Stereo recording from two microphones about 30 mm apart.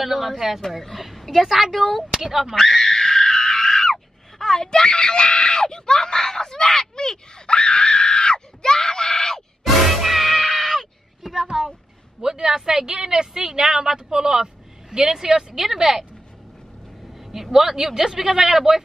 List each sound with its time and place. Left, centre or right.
0.0 s a woman's voice: centre
1.4 s speech: centre
1.7 s a woman's voice: centre
2.0 s speech: centre
2.8 s screaming: centre
9.6 s music: centre
12.2 s speech: centre
15.6 s speech: centre
17.2 s speech: centre